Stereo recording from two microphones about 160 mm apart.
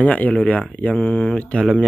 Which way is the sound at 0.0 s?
10° left (ahead or behind).